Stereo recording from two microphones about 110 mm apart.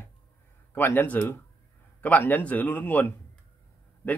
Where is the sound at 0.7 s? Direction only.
20° left (ahead or behind).